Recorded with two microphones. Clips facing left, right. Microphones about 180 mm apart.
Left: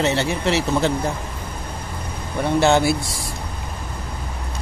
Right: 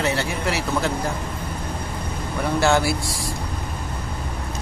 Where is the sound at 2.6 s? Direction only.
20° left (ahead or behind).